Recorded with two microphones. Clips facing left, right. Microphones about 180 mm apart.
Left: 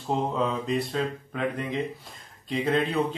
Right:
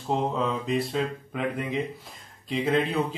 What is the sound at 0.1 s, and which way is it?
Speech, centre (ahead or behind).